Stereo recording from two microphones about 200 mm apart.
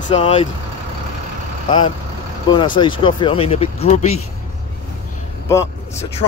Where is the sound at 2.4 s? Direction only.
25° left (ahead or behind).